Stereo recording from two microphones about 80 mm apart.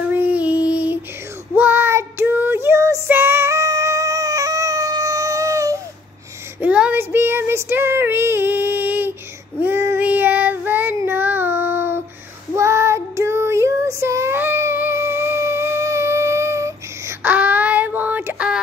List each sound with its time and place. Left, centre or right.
0.1 s child singing: right
6.6 s child singing: centre
7.0 s child singing: right
17.2 s child singing: right